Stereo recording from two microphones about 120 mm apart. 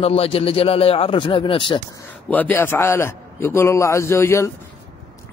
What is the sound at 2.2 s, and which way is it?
A man's voice, 15° left (ahead or behind).